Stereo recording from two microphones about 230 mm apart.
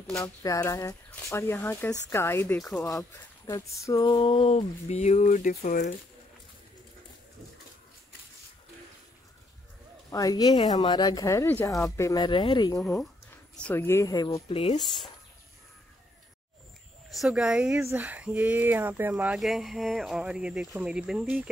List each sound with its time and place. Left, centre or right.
0.0 s speech: centre
0.4 s speech: centre; by 5.9 s left
10.1 s speech: centre
13.6 s speech: centre; by 14.8 s left
17.1 s speech: centre